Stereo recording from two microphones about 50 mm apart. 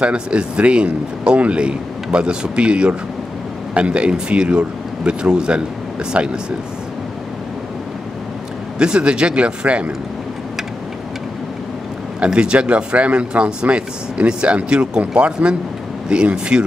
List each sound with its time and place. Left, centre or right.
0.0 s speech: right
8.7 s speech: centre
12.2 s speech: centre